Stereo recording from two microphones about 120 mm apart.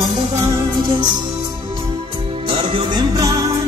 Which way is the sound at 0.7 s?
40° right (ahead or behind).